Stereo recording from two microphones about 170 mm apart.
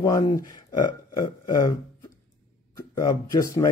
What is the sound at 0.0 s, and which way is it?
Speech, 25° left (ahead or behind).